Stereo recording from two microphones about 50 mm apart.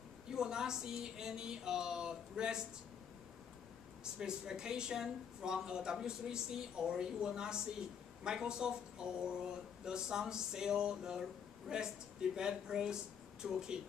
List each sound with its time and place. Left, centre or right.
0.3 s speech: centre
4.0 s speech: centre